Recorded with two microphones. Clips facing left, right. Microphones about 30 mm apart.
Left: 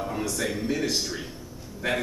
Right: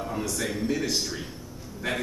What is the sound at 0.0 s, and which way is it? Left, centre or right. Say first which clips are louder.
A man's voice: left 1 dB; centre.